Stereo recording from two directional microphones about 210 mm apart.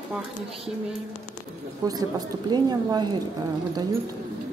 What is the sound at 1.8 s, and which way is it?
A woman's voice, 20° right (ahead or behind).